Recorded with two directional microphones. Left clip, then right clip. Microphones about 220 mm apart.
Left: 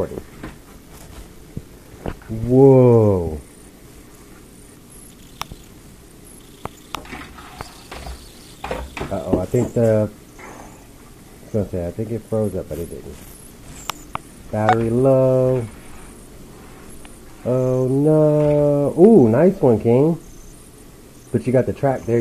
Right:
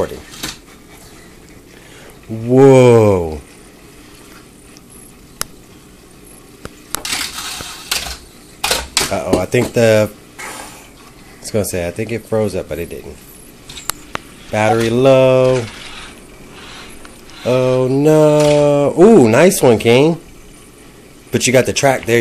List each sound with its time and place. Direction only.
2.5 s mantra: 20° right (ahead or behind)
8.5 s camera: 15° right (ahead or behind)
11.5 s mantra: 20° right (ahead or behind)
14.5 s mantra: 25° right (ahead or behind)
17.4 s mantra: 20° right (ahead or behind)
21.5 s mantra: 20° right (ahead or behind)